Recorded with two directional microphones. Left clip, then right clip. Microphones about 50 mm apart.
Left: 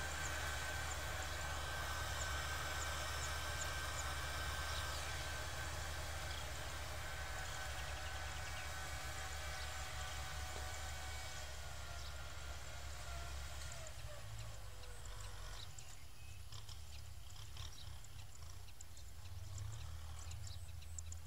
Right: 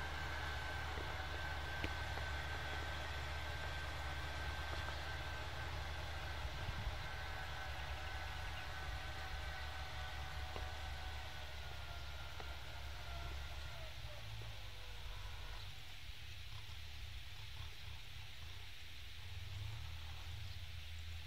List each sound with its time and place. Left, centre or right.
0.0 s vehicle: left
13.0 s train: centre